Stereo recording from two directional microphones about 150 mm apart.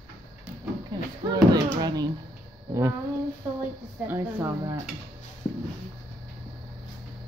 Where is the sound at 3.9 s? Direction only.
15° right (ahead or behind).